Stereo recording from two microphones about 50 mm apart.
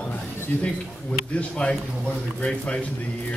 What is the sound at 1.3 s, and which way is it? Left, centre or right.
Speech, left.